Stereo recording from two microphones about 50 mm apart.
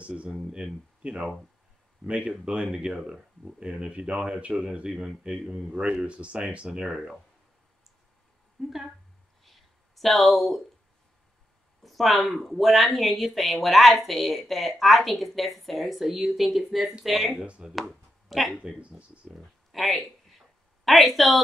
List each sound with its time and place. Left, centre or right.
0.0 s speech: right
8.6 s speech: centre
9.4 s a sound: centre
11.8 s speech: centre
17.4 s speech: centre
19.3 s a sound: centre